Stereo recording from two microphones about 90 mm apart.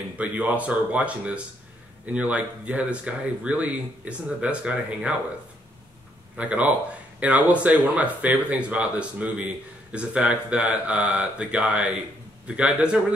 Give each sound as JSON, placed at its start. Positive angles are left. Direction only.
{"t": 0.2, "sound": "speech", "side_deg": -15}
{"t": 6.3, "sound": "speech", "side_deg": -15}